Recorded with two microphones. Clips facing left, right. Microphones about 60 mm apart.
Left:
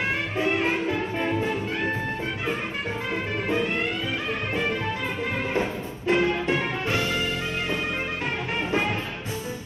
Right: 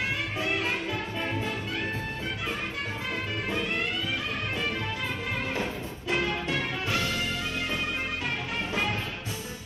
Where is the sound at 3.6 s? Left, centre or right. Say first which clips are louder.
Left 4 dB; left.